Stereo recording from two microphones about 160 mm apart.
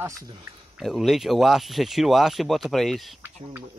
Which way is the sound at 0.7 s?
Centre (ahead or behind).